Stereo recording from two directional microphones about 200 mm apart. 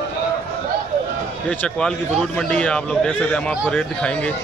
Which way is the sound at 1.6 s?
5° left (ahead or behind).